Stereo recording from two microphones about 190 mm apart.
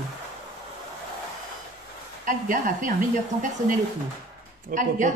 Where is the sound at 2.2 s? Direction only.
45° right (ahead or behind).